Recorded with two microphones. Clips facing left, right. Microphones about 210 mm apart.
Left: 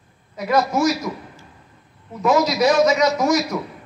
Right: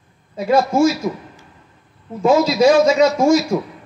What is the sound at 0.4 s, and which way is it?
Speech, 30° right (ahead or behind).